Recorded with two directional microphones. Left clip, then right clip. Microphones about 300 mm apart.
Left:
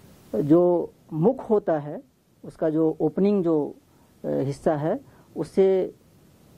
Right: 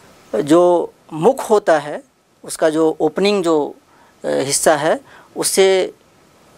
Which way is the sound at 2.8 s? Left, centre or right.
Right.